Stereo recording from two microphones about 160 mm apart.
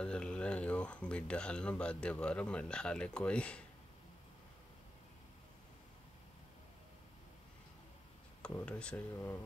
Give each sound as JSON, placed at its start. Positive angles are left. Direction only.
{"t": 0.0, "sound": "speech", "side_deg": 5}
{"t": 8.4, "sound": "speech", "side_deg": 5}